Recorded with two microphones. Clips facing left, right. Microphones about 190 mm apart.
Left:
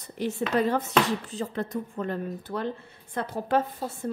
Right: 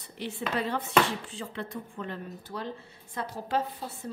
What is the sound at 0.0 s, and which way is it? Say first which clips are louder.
A woman's voice: left 6 dB; 45° left (ahead or behind).